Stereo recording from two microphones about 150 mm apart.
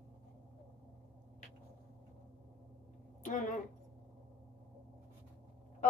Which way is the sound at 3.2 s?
60° left (ahead or behind).